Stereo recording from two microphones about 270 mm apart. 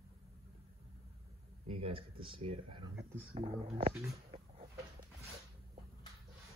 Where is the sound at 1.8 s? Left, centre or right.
Centre.